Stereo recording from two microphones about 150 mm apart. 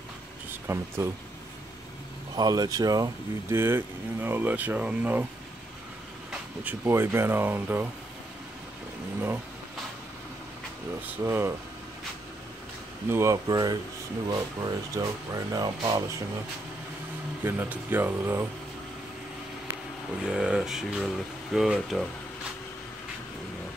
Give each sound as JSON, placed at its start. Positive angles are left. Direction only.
{"t": 0.5, "sound": "speech", "side_deg": -20}
{"t": 2.3, "sound": "speech", "side_deg": -25}
{"t": 6.6, "sound": "speech", "side_deg": -15}
{"t": 11.2, "sound": "speech", "side_deg": -20}
{"t": 13.1, "sound": "speech", "side_deg": -20}
{"t": 17.4, "sound": "speech", "side_deg": -15}
{"t": 20.2, "sound": "speech", "side_deg": -5}